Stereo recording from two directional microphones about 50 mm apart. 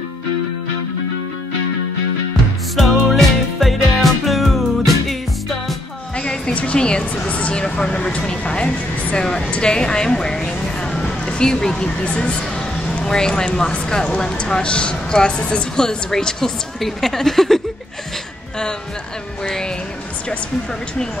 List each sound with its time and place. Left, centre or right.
2.7 s music: centre
6.1 s music: centre
7.2 s a woman's voice: left
7.9 s a woman's voice: left; by 17.6 s centre
19.4 s a woman's voice: centre